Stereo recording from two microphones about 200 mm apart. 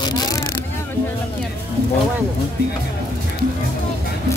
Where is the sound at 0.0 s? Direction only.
20° left (ahead or behind).